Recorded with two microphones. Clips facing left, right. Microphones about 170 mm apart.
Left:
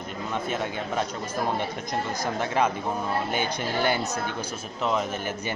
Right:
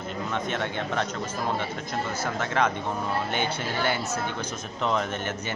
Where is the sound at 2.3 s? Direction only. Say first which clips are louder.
Left 1 dB; 15° left (ahead or behind).